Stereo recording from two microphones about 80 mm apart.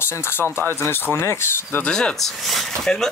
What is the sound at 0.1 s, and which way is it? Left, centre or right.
Speech, left.